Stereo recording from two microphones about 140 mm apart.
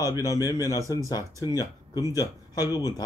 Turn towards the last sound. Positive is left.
turn(degrees=30)  # may be behind; listen again after turning